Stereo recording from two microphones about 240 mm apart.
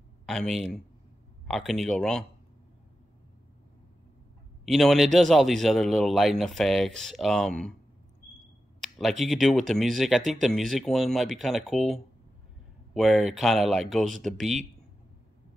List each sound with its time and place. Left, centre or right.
0.3 s speech: centre
4.6 s speech: centre
8.8 s speech: centre